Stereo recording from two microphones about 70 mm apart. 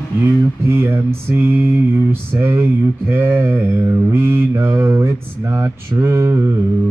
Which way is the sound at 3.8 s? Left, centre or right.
Right.